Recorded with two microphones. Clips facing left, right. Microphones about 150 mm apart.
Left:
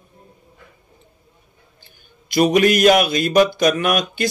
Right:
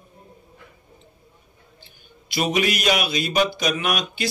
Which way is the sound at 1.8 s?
45° left (ahead or behind).